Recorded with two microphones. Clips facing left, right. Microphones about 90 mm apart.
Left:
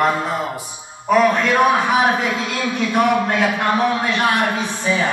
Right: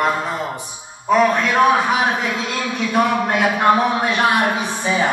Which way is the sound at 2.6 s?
15° right (ahead or behind).